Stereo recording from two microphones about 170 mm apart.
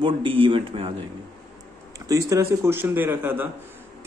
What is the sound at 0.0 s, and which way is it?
Speech, 30° right (ahead or behind).